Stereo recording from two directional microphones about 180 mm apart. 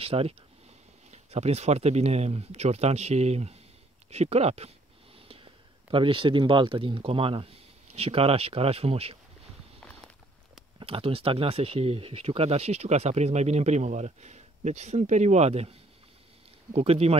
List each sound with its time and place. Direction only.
0.0 s a man's voice: 30° right (ahead or behind)
9.8 s walk: 5° left (ahead or behind)
10.8 s speech: 30° right (ahead or behind)